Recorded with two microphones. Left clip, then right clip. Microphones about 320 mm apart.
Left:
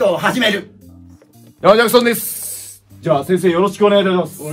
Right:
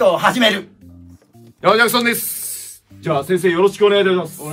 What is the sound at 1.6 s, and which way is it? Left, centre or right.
A man's voice, centre.